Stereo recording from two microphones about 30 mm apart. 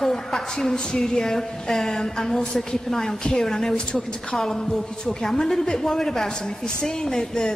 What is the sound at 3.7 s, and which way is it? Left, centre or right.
Speech, left.